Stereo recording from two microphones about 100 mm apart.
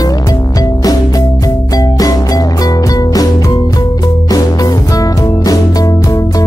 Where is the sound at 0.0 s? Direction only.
35° left (ahead or behind).